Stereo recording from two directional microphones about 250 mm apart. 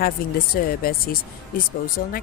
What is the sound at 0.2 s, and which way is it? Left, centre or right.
Speech, left.